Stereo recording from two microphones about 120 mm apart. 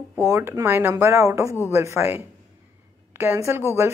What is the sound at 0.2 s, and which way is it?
A woman's voice, 25° right (ahead or behind).